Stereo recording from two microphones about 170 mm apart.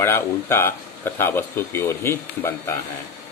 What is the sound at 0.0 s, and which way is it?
Speech, 15° left (ahead or behind).